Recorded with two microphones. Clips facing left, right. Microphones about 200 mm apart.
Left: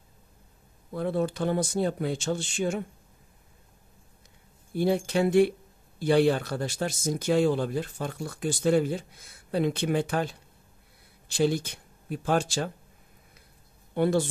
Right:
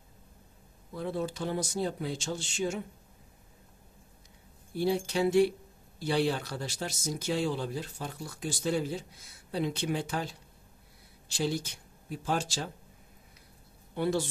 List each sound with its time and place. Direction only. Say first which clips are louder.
0.9 s speech: left 6 dB; 60° left (ahead or behind)
4.7 s speech: left 4 dB; 55° left (ahead or behind)
13.9 s a man's voice: left 5 dB; 55° left (ahead or behind)